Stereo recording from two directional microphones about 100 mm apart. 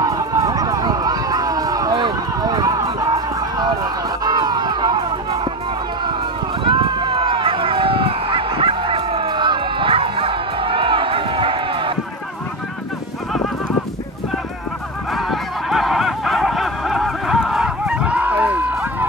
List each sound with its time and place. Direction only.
0.0 s run: 40° right (ahead or behind)
4.2 s crowd: 45° right (ahead or behind)
6.6 s run: 55° right (ahead or behind)
15.1 s fowl: centre (ahead or behind); by 19.0 s 15° right (ahead or behind)